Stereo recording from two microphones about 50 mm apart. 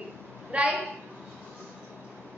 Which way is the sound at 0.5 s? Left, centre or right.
Right.